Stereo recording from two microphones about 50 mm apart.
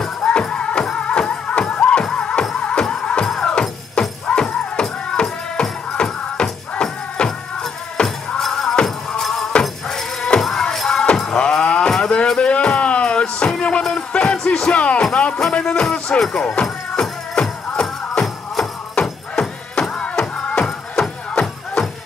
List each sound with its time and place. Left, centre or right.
0.2 s music: centre
9.5 s sheep: centre
10.4 s music: centre
11.9 s a sound: centre
12.4 s music: left
14.7 s music: left
20.5 s music: centre